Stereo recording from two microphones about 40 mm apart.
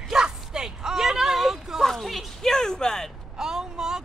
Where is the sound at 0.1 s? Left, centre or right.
Centre.